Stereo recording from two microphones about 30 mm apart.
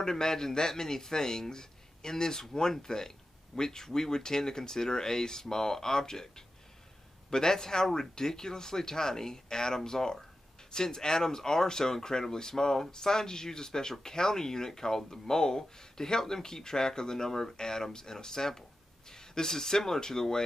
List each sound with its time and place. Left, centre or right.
0.0 s speech: centre